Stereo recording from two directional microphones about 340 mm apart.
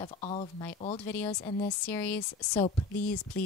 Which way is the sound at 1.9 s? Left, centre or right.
Centre.